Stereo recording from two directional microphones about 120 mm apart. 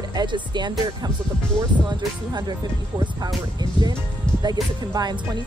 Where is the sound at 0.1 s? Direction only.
35° right (ahead or behind).